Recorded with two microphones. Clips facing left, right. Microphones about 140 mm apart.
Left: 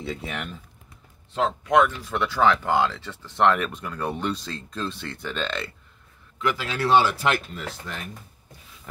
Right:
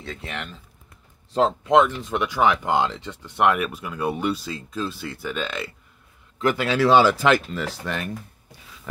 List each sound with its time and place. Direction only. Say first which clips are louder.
0.0 s speech: left 2 dB; 10° left (ahead or behind)
1.3 s speech: right 3 dB; 30° right (ahead or behind); by 5.7 s 5° right (ahead or behind)
6.4 s speech: right 5 dB; 60° right (ahead or behind)